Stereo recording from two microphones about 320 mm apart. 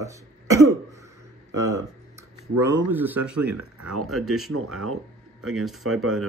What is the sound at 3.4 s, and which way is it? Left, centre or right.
Speech, right.